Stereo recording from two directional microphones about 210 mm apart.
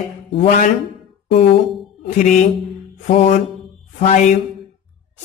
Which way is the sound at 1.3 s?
25° left (ahead or behind).